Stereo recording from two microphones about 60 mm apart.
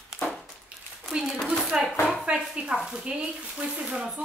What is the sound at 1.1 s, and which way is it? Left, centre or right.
Speech, centre.